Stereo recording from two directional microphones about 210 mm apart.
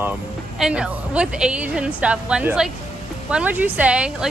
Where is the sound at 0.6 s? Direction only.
5° right (ahead or behind).